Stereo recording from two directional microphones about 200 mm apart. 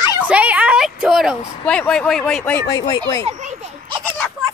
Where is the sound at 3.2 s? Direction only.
35° right (ahead or behind).